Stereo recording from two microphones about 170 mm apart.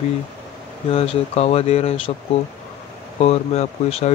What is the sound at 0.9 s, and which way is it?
Speech, 35° left (ahead or behind).